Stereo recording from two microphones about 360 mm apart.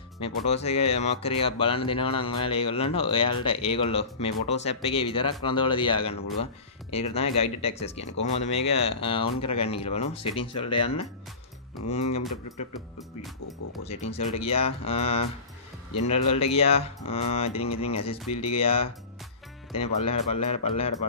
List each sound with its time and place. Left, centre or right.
0.2 s speech: centre
13.8 s speech: centre